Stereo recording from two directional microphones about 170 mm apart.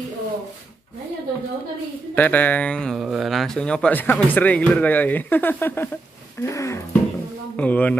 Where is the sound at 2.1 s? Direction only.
10° left (ahead or behind).